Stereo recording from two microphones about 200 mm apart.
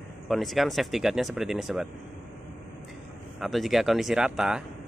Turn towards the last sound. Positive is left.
turn(degrees=-5)  # may be behind; listen again after turning